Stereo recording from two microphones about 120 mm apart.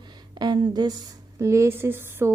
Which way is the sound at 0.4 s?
35° right (ahead or behind).